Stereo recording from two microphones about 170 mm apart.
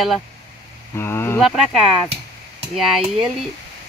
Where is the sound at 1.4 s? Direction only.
Centre (ahead or behind).